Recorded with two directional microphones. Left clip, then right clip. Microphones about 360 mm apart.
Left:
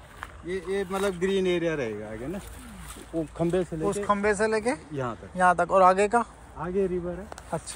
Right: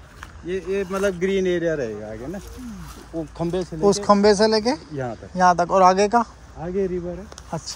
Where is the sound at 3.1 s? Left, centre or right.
Centre.